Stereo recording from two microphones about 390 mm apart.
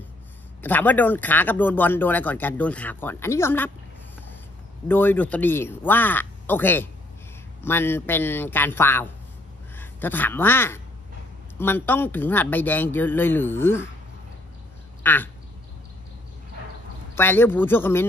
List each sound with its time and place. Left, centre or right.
0.6 s speech: centre
4.8 s a man's voice: centre
15.0 s duck: centre
17.1 s speech: centre